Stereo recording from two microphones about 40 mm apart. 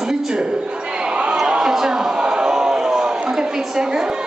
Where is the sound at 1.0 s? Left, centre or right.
Right.